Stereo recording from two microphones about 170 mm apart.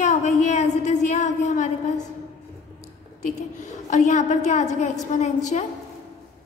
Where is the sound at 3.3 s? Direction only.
45° left (ahead or behind).